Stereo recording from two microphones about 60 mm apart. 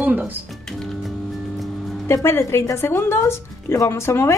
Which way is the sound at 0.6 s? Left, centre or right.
Centre.